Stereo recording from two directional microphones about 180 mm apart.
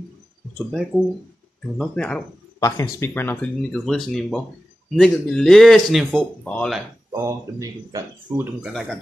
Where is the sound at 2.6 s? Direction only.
15° left (ahead or behind).